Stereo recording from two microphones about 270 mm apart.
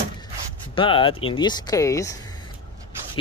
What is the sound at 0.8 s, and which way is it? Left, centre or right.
Speech, centre.